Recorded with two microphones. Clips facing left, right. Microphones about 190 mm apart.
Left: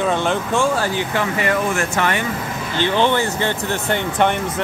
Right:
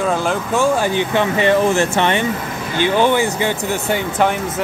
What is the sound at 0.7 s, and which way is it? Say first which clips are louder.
Speech: right 4 dB; 20° right (ahead or behind).